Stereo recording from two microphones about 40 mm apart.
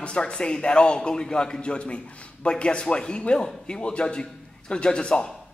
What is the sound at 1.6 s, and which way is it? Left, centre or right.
Speech, left.